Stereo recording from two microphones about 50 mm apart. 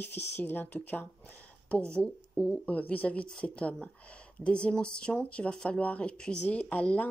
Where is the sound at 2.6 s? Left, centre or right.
Left.